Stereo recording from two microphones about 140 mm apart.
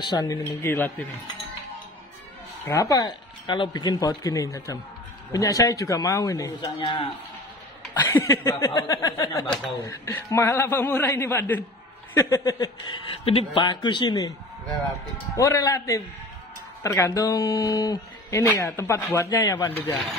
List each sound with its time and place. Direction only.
0.0 s speech: 30° left (ahead or behind)
0.5 s a man's voice: 15° left (ahead or behind)
2.6 s speech: 20° left (ahead or behind)
6.6 s speech: 35° left (ahead or behind)
8.0 s a man's voice: 20° left (ahead or behind)
15.3 s speech: 20° left (ahead or behind)